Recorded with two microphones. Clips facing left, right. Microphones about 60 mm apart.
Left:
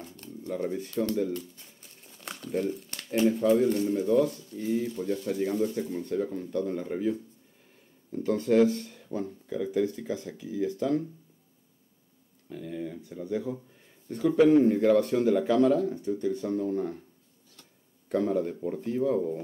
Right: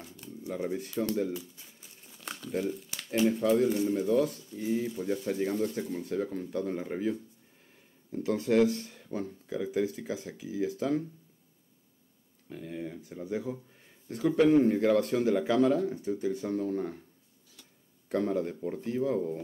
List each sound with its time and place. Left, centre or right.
0.0 s a sound: centre
1.1 s speech: centre
5.2 s speech: centre
5.5 s speech: centre
12.4 s speech: centre
18.0 s speech: centre